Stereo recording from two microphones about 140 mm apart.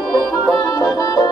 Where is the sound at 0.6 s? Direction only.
25° left (ahead or behind).